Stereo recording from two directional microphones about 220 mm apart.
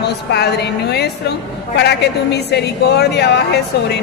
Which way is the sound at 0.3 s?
50° left (ahead or behind).